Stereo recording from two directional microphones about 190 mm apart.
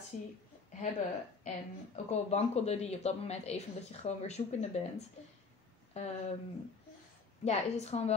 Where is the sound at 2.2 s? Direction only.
35° left (ahead or behind).